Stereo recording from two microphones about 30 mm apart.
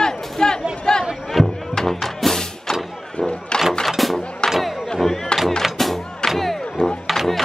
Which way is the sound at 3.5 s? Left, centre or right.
Left.